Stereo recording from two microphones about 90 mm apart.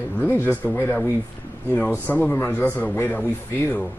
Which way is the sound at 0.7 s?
15° left (ahead or behind).